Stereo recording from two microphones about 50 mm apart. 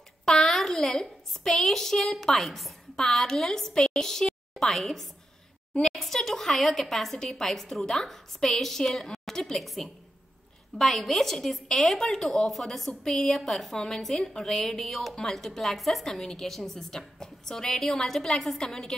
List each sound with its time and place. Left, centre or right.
0.2 s a woman's voice: centre